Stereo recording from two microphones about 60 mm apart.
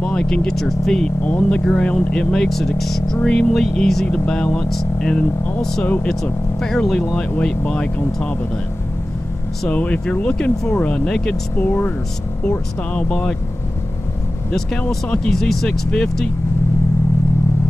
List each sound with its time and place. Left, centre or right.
0.0 s speech: centre
1.2 s speech: left
6.6 s speech: centre
9.7 s speech: left
11.6 s speech: left
15.2 s speech: centre